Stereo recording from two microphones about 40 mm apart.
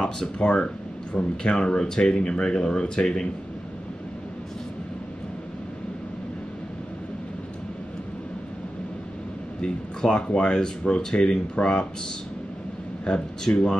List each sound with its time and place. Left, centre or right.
0.2 s speech: left
9.6 s speech: left
13.1 s speech: left
13.5 s speech: left